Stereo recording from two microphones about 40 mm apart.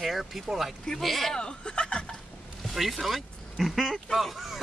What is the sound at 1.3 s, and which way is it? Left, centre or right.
Speech, left.